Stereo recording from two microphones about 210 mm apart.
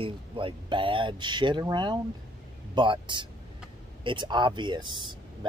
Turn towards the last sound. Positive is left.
turn(degrees=-20)  # may be behind; listen again after turning